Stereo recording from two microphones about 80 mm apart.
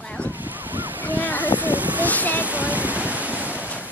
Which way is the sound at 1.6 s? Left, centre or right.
Right.